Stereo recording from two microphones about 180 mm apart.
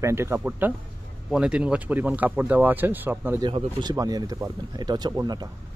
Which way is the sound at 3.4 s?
25° right (ahead or behind).